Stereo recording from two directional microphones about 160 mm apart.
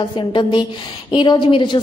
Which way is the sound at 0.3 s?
30° left (ahead or behind).